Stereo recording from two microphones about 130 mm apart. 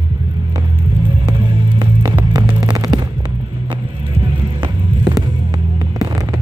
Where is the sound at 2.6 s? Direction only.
30° right (ahead or behind).